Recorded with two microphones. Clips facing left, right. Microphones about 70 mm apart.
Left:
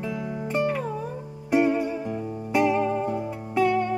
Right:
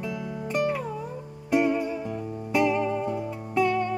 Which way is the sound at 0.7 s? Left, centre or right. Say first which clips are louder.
Left 2 dB; centre.